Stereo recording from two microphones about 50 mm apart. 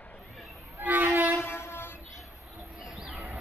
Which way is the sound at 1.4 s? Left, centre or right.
Left.